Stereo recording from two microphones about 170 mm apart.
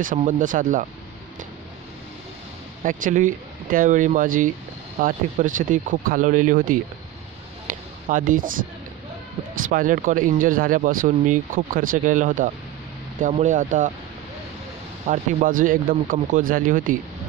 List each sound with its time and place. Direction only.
0.0 s speech: 50° right (ahead or behind)
2.8 s speech: 50° right (ahead or behind)
7.6 s a sound: 50° right (ahead or behind)
9.7 s speech: 50° right (ahead or behind)
15.0 s speech: 50° right (ahead or behind)